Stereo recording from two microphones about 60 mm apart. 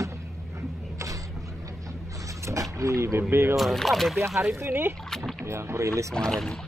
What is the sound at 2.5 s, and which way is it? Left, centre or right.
Speech, right.